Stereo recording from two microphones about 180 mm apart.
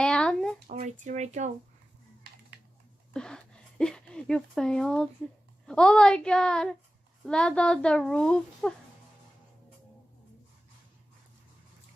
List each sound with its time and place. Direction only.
0.0 s a sound: 5° left (ahead or behind)
0.7 s speech: 45° right (ahead or behind)
3.1 s a child's voice: 5° left (ahead or behind)